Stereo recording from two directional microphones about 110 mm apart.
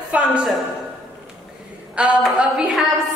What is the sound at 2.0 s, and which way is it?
Speech, 10° right (ahead or behind).